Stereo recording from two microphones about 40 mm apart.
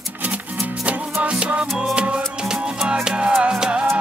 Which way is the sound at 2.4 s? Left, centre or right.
Centre.